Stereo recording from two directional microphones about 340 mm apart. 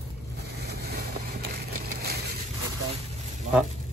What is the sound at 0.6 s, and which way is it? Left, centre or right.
Vehicle, right.